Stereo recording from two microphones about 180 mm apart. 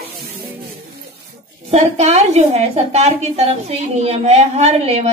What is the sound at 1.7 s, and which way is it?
A woman's voice, 35° right (ahead or behind).